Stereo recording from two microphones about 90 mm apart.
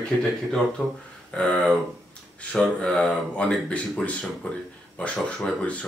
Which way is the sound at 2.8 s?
10° left (ahead or behind).